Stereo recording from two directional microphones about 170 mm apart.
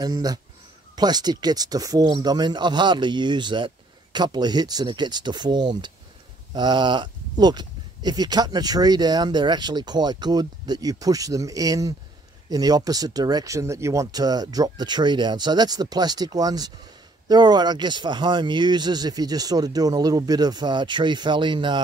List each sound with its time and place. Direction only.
0.0 s speech: 25° right (ahead or behind)